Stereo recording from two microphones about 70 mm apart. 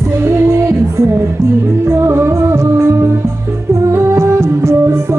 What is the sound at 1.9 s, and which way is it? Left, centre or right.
Music, right.